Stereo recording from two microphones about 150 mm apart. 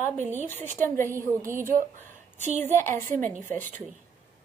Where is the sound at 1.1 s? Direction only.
20° right (ahead or behind).